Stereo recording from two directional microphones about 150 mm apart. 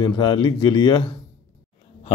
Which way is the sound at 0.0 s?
30° left (ahead or behind).